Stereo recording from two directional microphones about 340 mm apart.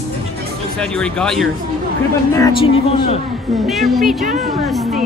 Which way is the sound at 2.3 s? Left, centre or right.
Centre.